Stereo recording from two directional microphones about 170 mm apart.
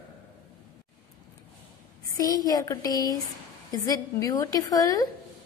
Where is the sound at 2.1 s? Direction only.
20° left (ahead or behind).